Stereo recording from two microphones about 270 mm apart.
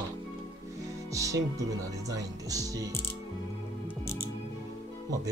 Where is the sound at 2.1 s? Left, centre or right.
Centre.